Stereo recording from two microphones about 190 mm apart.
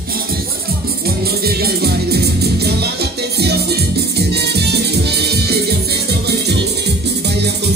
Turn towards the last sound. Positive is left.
turn(degrees=-60)  # may be behind; listen again after turning